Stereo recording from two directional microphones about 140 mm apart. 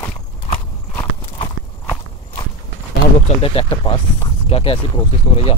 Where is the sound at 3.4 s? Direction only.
40° left (ahead or behind).